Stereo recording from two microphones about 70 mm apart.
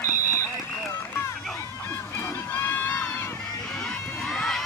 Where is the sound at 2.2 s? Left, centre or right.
Left.